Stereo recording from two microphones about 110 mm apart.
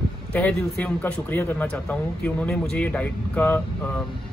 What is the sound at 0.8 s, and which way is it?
Speech, 15° left (ahead or behind).